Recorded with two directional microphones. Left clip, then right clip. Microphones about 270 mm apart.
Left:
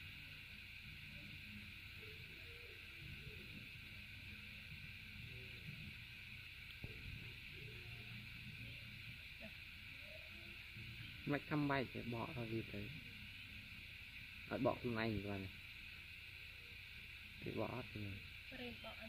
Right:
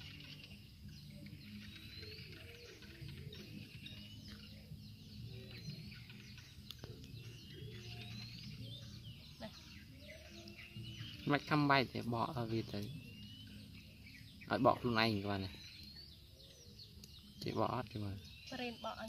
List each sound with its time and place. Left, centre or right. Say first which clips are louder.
11.2 s speech: right 8 dB; centre
14.5 s speech: right 8 dB; centre
17.6 s speech: right 8 dB; centre